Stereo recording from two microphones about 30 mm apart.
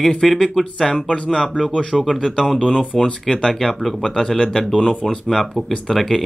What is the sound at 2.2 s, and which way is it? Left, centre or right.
Speech, centre.